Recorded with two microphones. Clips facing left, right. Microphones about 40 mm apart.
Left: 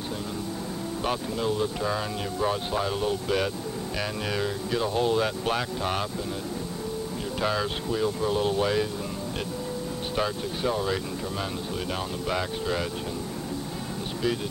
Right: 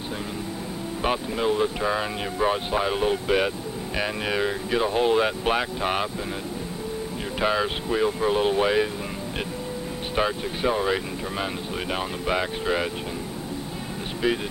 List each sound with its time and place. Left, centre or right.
1.0 s speech: right
7.3 s speech: right
10.1 s speech: right
14.2 s speech: right